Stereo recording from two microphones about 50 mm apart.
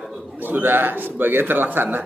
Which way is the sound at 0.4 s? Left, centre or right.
Right.